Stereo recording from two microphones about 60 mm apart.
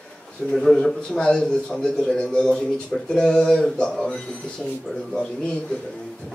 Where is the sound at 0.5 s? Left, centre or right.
Centre.